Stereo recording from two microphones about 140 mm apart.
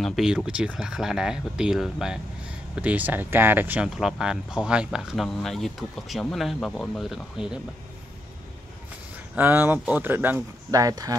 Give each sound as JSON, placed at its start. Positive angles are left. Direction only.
{"t": 0.0, "sound": "speech", "side_deg": 0}
{"t": 9.3, "sound": "speech", "side_deg": -15}
{"t": 10.7, "sound": "speech", "side_deg": -25}